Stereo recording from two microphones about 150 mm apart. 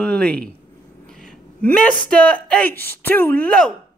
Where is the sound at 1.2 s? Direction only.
5° left (ahead or behind).